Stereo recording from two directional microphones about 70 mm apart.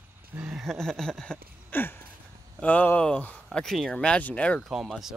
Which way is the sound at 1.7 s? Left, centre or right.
Left.